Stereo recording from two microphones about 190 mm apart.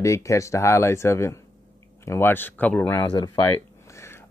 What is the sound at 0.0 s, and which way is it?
Speech, 15° left (ahead or behind).